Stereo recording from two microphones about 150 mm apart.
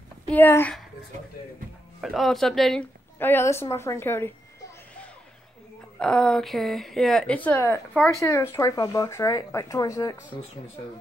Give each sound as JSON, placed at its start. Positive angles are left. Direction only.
{"t": 0.3, "sound": "a woman's voice", "side_deg": 15}
{"t": 2.0, "sound": "speech", "side_deg": 0}
{"t": 3.2, "sound": "a woman's voice", "side_deg": 15}
{"t": 5.9, "sound": "speech", "side_deg": 5}